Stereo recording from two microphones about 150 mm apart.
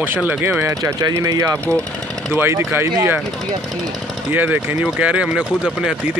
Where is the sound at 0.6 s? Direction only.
20° right (ahead or behind).